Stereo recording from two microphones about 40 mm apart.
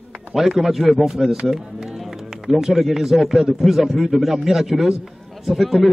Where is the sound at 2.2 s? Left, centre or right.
Centre.